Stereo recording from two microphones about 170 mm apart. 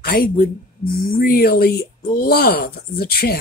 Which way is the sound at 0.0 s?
60° left (ahead or behind).